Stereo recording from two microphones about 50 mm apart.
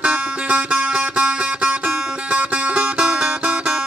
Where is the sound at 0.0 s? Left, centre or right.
Right.